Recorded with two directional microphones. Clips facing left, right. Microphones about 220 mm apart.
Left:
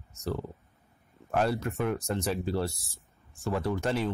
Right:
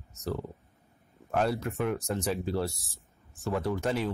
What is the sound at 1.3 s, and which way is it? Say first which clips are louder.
Speech: left 1 dB; centre (ahead or behind).